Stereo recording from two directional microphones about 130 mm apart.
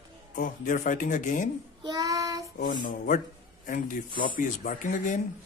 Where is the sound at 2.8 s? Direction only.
90° left.